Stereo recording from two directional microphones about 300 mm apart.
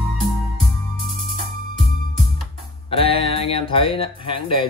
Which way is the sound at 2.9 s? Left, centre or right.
Centre.